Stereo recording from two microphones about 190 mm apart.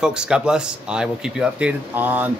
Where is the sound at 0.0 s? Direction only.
5° right (ahead or behind).